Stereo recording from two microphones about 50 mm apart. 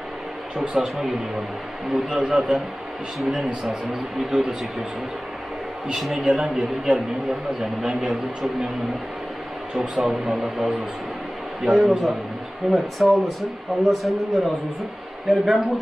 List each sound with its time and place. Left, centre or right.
0.6 s a man's voice: centre
5.9 s a man's voice: centre
9.9 s a man's voice: centre